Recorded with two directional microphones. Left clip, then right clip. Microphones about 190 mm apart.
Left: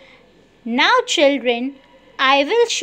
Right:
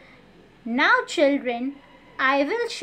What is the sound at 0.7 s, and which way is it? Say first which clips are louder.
A woman's voice: left 5 dB; 35° left (ahead or behind).